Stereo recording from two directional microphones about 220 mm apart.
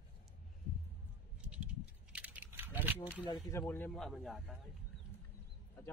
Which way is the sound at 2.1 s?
5° right (ahead or behind).